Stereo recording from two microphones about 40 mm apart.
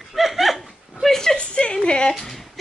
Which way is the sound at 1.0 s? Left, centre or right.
Centre.